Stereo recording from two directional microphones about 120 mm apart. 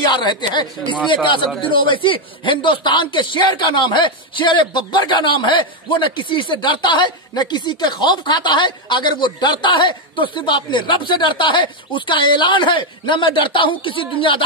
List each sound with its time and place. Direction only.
0.0 s a man's voice: 40° left (ahead or behind)